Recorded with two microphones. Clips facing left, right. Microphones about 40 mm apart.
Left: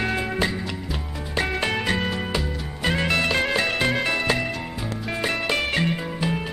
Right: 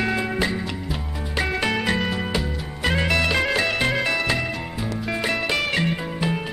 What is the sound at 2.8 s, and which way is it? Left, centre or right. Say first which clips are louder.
Music: right 1 dB; right.